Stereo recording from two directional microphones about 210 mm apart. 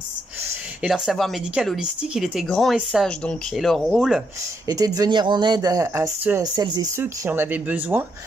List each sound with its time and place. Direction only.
0.8 s speech: centre (ahead or behind)
4.6 s speech: 15° right (ahead or behind)